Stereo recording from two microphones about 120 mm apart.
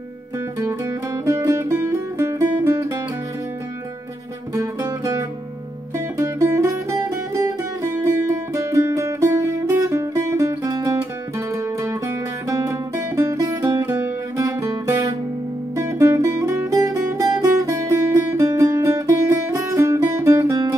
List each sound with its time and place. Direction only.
0.6 s music: 25° right (ahead or behind)
4.6 s music: 25° right (ahead or behind)
13.8 s music: 15° right (ahead or behind)
14.4 s music: 30° right (ahead or behind)